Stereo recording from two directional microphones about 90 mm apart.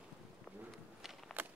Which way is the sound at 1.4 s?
20° right (ahead or behind).